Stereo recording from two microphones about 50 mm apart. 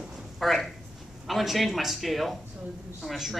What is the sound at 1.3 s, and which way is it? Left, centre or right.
A man's voice, centre.